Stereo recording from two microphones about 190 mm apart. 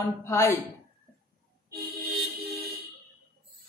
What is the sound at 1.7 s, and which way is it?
Vehicle, 55° right (ahead or behind).